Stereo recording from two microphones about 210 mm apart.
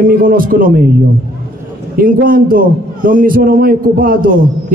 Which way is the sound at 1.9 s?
40° right (ahead or behind).